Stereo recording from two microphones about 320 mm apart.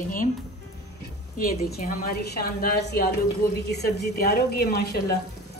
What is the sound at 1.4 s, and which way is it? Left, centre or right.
A woman's voice, left.